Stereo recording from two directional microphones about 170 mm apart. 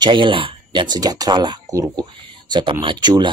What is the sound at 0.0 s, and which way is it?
Speech, 30° right (ahead or behind).